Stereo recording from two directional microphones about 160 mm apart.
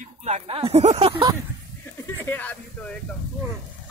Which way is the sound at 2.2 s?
10° left (ahead or behind).